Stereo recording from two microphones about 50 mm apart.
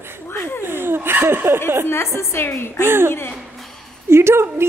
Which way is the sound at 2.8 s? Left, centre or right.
Right.